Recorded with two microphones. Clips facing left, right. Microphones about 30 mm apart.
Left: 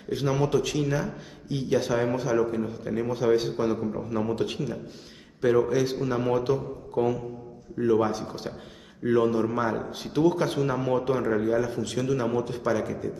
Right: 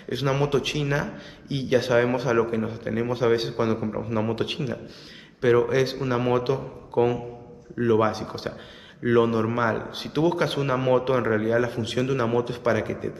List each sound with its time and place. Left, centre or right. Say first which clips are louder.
0.1 s speech: right 1 dB; right